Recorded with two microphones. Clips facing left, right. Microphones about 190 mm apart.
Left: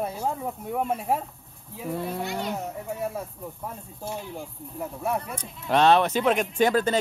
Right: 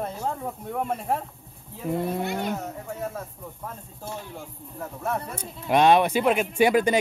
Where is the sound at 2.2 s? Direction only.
55° right (ahead or behind).